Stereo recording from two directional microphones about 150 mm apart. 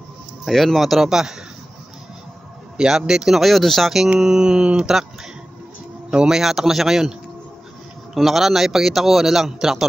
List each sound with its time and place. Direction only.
0.5 s speech: centre (ahead or behind)
2.8 s speech: 5° right (ahead or behind)
6.0 s speech: 5° right (ahead or behind)